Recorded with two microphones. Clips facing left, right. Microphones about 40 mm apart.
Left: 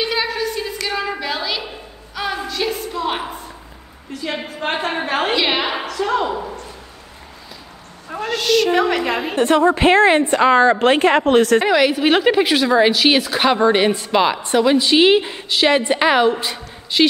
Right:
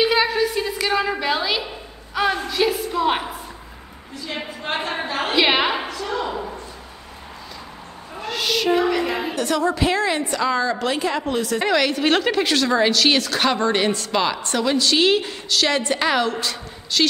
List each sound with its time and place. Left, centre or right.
0.0 s a sound: centre
1.2 s a woman's voice: centre
4.6 s a woman's voice: left
5.0 s a woman's voice: left
5.3 s a woman's voice: centre
5.9 s a woman's voice: left
8.3 s a woman's voice: centre
8.7 s a woman's voice: left
9.3 s a woman's voice: left
11.6 s a woman's voice: centre